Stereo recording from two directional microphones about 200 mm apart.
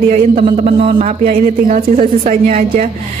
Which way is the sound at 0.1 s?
30° right (ahead or behind).